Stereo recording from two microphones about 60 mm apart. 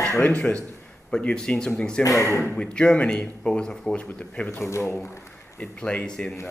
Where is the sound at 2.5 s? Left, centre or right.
Centre.